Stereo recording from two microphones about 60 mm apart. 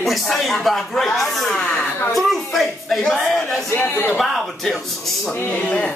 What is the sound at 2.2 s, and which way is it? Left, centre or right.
A man's voice, centre.